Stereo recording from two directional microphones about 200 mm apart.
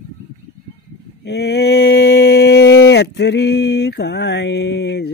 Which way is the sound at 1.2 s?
55° left (ahead or behind).